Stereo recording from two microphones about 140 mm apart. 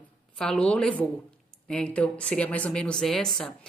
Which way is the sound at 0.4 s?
5° left (ahead or behind).